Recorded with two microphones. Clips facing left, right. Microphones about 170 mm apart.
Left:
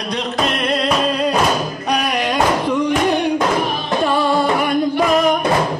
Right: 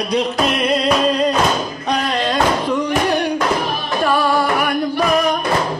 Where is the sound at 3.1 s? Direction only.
20° left (ahead or behind).